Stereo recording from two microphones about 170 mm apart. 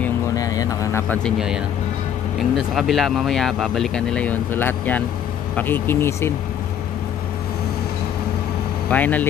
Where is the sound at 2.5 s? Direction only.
Centre (ahead or behind); by 6.3 s 15° left (ahead or behind).